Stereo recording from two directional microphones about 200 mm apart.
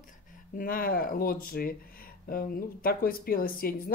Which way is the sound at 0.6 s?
45° left (ahead or behind).